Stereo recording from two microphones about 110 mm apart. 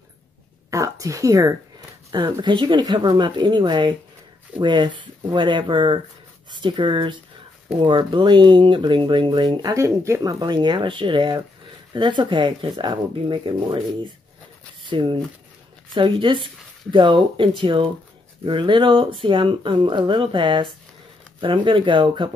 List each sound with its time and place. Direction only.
0.7 s a sound: 30° right (ahead or behind)
2.1 s speech: 45° right (ahead or behind)
9.8 s speech: 25° right (ahead or behind)
10.4 s speech: 45° right (ahead or behind)